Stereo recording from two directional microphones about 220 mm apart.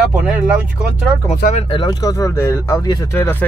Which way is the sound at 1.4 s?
30° left (ahead or behind).